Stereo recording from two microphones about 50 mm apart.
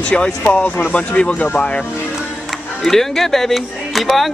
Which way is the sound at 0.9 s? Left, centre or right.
Left.